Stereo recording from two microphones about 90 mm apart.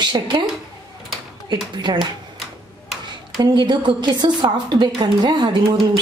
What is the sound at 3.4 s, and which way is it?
A woman's voice, 55° right (ahead or behind).